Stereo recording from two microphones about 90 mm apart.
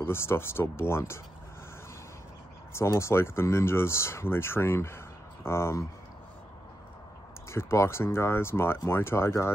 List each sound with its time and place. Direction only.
0.0 s speech: 25° left (ahead or behind)
2.7 s speech: 30° left (ahead or behind)
7.5 s speech: 30° left (ahead or behind)